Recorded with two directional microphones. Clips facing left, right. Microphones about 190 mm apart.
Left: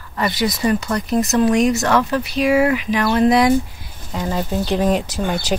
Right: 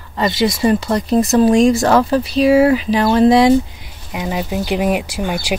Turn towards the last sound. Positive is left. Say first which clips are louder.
# right 1 dB
turn(degrees=-10)  # may be behind; listen again after turning